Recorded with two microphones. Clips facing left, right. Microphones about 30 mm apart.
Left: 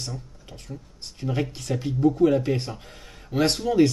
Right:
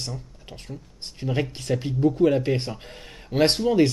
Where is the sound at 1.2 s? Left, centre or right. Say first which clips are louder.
Right 1 dB; centre.